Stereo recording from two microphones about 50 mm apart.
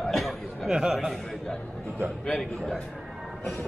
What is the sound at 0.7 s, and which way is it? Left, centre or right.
Speech, centre.